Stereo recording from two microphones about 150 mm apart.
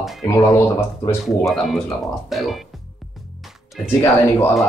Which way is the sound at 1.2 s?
Centre (ahead or behind).